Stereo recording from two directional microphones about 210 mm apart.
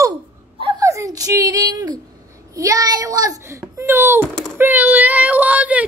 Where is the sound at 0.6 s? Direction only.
20° right (ahead or behind).